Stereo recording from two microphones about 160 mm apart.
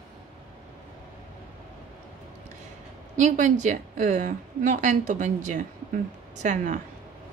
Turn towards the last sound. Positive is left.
turn(degrees=-50)  # may be behind; listen again after turning